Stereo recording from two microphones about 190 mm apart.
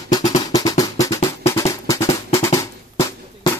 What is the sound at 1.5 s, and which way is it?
Drum, 15° left (ahead or behind).